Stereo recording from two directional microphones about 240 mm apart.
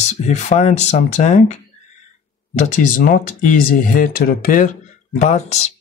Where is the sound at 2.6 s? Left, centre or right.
Left.